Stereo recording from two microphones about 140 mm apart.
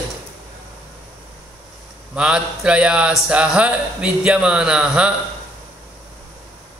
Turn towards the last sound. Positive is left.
turn(degrees=-5)  # may be behind; listen again after turning